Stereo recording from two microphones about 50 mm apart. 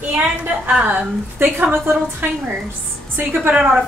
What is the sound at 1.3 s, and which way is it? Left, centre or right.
A woman's voice, right.